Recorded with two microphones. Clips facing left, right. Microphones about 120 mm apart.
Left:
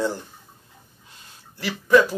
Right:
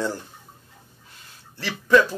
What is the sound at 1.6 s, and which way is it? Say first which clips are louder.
Speech: even; 15° left (ahead or behind).